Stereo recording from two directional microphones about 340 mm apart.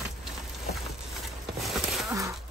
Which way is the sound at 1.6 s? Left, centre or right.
Centre.